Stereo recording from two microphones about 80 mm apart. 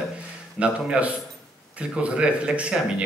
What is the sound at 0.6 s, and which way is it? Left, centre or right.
Speech, centre.